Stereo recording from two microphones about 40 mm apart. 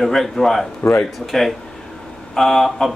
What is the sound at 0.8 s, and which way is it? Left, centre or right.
Speech, left.